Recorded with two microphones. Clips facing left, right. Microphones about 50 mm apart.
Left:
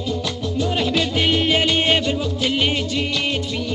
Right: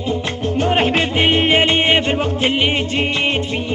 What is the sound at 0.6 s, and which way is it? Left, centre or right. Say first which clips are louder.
Music: right 5 dB; right.